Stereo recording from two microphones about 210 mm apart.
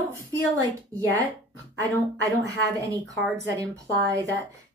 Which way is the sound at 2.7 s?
15° right (ahead or behind).